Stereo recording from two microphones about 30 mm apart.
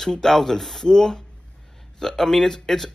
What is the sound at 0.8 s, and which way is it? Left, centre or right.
Speech, left.